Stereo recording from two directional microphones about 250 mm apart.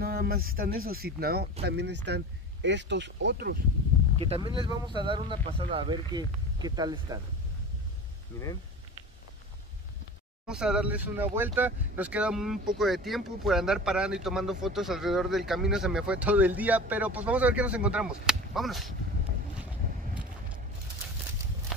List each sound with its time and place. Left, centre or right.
0.0 s speech: right
4.2 s speech: right
8.3 s speech: centre
10.4 s speech: centre